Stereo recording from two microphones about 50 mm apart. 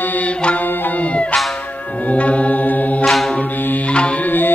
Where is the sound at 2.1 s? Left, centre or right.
Left.